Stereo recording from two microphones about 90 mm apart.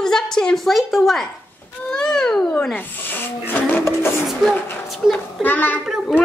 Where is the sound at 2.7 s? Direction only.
20° left (ahead or behind).